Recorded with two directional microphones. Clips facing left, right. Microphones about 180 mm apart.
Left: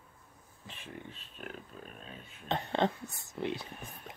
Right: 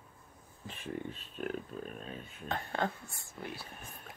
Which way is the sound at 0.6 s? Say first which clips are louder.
Right 6 dB; 45° right (ahead or behind).